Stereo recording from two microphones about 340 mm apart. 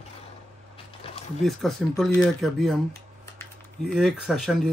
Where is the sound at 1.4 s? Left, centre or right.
Centre.